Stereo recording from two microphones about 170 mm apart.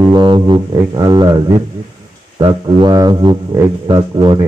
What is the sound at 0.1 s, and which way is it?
Didgeridoo, 25° right (ahead or behind).